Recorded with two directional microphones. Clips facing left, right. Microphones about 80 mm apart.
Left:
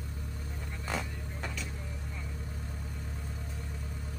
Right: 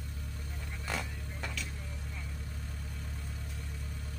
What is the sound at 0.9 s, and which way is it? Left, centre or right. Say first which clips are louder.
Vehicle: left 2 dB; centre.